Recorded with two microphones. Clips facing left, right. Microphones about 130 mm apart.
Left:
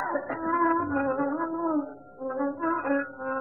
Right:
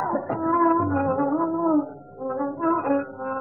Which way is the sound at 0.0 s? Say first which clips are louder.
Right 5 dB; 30° right (ahead or behind).